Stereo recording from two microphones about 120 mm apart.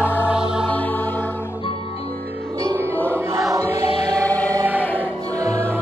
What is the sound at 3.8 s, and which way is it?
Music, 60° left (ahead or behind).